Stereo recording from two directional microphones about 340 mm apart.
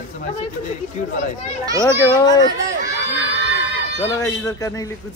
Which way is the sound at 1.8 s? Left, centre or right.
Centre.